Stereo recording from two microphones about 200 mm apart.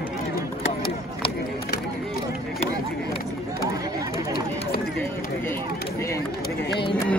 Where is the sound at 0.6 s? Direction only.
25° left (ahead or behind).